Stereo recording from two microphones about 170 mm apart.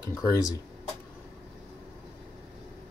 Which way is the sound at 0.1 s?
20° left (ahead or behind).